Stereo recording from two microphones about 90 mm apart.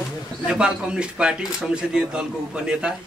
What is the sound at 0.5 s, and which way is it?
A man's voice, 10° right (ahead or behind).